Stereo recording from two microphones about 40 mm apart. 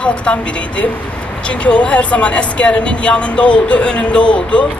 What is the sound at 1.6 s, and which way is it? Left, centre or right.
Speech, left.